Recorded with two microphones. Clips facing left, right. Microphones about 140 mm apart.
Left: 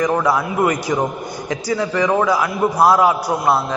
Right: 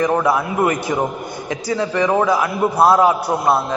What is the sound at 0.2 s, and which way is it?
A man's voice, 25° right (ahead or behind).